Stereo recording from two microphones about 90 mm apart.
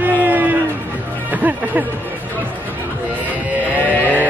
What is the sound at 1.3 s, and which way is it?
Speech, 20° right (ahead or behind).